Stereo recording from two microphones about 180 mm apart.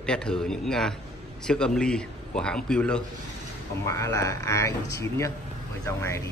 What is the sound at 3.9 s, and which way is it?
Speech, 15° left (ahead or behind).